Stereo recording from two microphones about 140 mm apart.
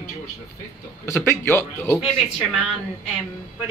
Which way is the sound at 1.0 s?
20° left (ahead or behind).